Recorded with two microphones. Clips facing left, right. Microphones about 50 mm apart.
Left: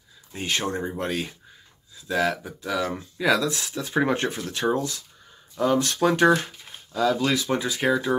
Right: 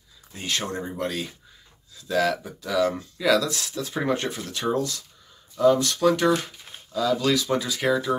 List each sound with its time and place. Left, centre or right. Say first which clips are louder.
0.3 s speech: left 2 dB; left
2.0 s speech: right 1 dB; centre; by 6.3 s left
7.1 s speech: right 1 dB; centre